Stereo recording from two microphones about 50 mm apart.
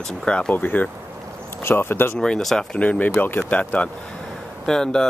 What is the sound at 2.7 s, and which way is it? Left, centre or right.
Speech, left.